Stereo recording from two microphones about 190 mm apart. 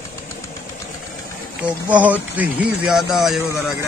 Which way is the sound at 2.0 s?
10° right (ahead or behind).